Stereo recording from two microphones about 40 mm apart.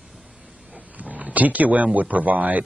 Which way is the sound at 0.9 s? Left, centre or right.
Right.